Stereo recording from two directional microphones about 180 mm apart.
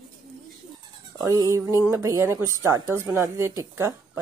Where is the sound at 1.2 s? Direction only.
20° right (ahead or behind).